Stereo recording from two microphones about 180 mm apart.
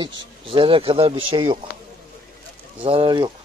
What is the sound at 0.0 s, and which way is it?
Speech, 30° right (ahead or behind).